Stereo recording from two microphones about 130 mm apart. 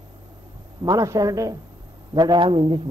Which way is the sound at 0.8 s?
30° right (ahead or behind).